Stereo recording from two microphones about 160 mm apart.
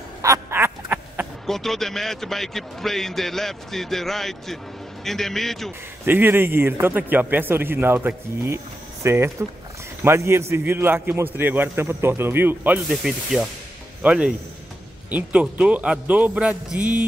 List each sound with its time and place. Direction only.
0.2 s duck: 15° right (ahead or behind)
1.4 s a man's voice: centre (ahead or behind)
6.0 s speech: 15° right (ahead or behind)
12.9 s a man's voice: 5° right (ahead or behind)